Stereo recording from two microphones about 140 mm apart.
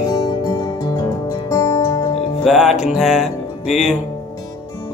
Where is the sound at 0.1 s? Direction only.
25° left (ahead or behind).